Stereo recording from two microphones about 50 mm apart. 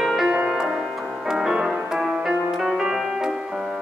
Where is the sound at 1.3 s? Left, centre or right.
Centre.